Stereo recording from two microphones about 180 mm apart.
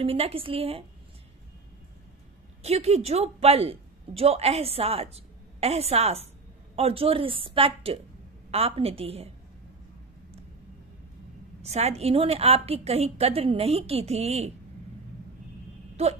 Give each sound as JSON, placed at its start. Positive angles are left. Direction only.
{"t": 0.0, "sound": "a woman's voice", "side_deg": -30}
{"t": 2.6, "sound": "a woman's voice", "side_deg": -35}
{"t": 11.6, "sound": "a woman's voice", "side_deg": -35}
{"t": 16.0, "sound": "a woman's voice", "side_deg": -35}